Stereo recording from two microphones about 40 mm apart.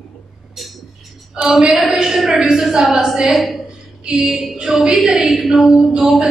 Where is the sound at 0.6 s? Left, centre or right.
Centre.